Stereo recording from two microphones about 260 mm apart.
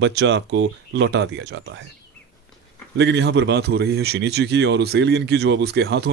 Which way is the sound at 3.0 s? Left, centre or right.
Right.